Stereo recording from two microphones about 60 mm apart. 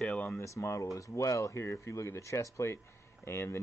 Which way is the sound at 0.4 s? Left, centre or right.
Left.